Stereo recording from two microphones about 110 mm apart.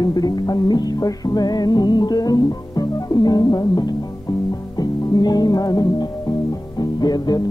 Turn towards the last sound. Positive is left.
turn(degrees=40)  # may be behind; listen again after turning